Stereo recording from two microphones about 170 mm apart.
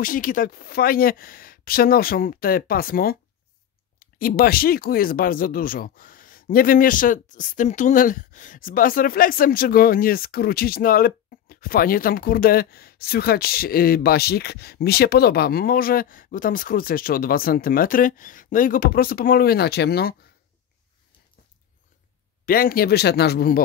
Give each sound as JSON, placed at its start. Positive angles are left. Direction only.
{"t": 0.0, "sound": "speech", "side_deg": 55}
{"t": 4.4, "sound": "speech", "side_deg": 60}
{"t": 22.4, "sound": "speech", "side_deg": 60}